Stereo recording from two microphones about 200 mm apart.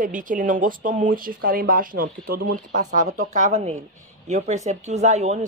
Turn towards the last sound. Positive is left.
turn(degrees=-35)  # may be behind; listen again after turning